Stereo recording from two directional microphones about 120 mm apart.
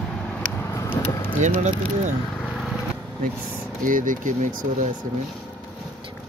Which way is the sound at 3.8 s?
90° right.